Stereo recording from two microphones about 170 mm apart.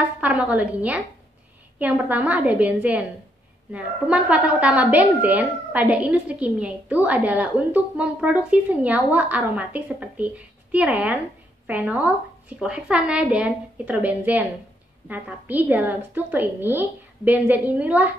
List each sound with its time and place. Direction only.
0.2 s a woman's voice: 10° right (ahead or behind)